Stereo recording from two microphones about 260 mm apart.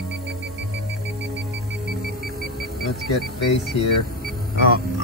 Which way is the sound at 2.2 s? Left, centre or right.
Right.